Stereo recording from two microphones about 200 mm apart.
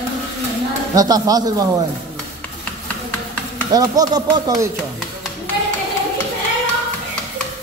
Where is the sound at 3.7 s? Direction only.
20° right (ahead or behind).